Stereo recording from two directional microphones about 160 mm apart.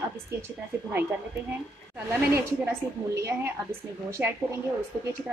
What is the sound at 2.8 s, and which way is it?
Speech, 15° right (ahead or behind).